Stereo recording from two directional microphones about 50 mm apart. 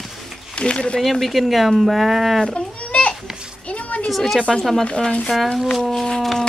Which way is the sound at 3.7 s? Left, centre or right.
Left.